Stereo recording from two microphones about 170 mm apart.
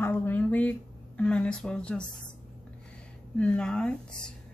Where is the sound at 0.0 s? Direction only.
10° left (ahead or behind).